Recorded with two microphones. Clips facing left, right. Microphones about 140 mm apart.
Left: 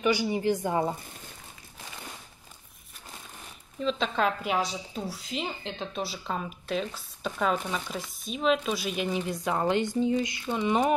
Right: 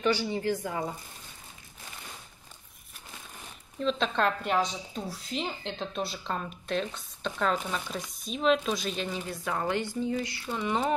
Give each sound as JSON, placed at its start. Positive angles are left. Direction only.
{"t": 0.0, "sound": "speech", "side_deg": 15}
{"t": 3.8, "sound": "a woman's voice", "side_deg": 0}